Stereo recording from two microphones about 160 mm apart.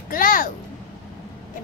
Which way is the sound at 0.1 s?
60° left (ahead or behind).